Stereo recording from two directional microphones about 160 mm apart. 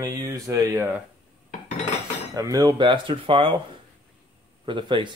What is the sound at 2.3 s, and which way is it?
Speech, 20° right (ahead or behind).